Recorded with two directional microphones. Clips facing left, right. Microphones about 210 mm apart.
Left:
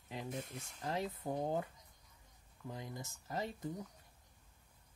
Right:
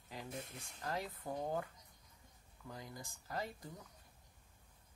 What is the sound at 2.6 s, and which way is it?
Speech, 20° left (ahead or behind).